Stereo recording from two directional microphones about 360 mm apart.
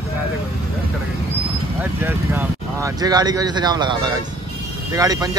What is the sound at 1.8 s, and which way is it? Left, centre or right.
Speech, centre.